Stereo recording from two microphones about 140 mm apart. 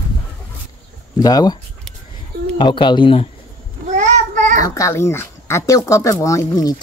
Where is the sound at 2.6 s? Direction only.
35° left (ahead or behind).